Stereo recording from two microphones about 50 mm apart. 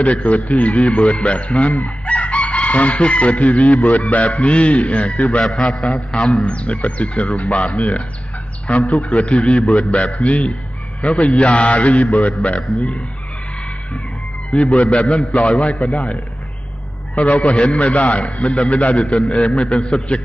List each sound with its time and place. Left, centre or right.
0.0 s speech: left
5.4 s a man's voice: centre
6.4 s speech: left
14.5 s speech: left
17.3 s speech: left
19.1 s a man's voice: centre
19.4 s speech: left